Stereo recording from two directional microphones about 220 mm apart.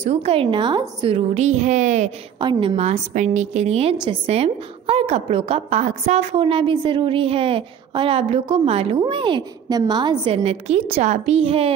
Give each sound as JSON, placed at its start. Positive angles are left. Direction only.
{"t": 0.0, "sound": "a woman's voice", "side_deg": -30}
{"t": 2.4, "sound": "a woman's voice", "side_deg": -20}